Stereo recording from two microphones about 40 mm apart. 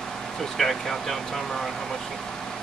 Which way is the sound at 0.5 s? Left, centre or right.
Centre.